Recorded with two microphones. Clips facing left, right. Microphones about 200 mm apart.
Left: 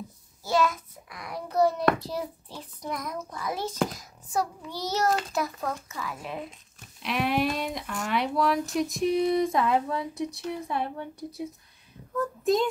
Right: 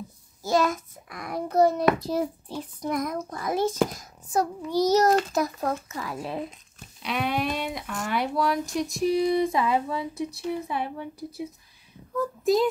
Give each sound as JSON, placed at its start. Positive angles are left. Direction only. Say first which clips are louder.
{"t": 0.4, "sound": "a sound", "louder": "right 2 dB", "side_deg": -45}
{"t": 2.0, "sound": "a child's voice", "louder": "right 6 dB", "side_deg": -45}
{"t": 7.0, "sound": "speech", "louder": "left 1 dB", "side_deg": 0}